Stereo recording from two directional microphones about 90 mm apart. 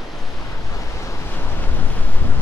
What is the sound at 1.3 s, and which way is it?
Wind noise, 20° left (ahead or behind).